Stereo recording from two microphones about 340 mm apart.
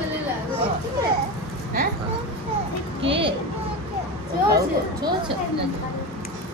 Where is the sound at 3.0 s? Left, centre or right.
Centre.